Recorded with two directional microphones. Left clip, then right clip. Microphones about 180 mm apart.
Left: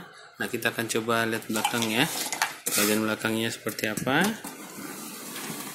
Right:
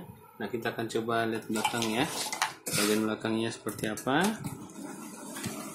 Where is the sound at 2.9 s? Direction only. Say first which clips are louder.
Left 3 dB; 15° left (ahead or behind).